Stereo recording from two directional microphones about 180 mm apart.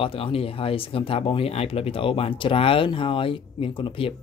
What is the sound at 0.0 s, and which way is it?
Speech, 30° left (ahead or behind).